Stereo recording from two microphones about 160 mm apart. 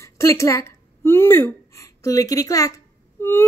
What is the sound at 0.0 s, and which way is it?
Speech, 20° left (ahead or behind).